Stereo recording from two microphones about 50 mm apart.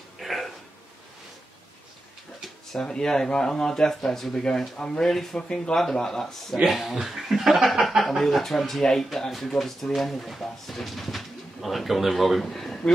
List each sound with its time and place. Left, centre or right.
0.2 s a sound: centre
2.7 s speech: centre
6.5 s speech: centre
9.6 s speech: centre